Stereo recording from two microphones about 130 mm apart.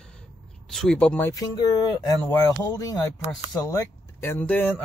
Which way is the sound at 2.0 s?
30° left (ahead or behind).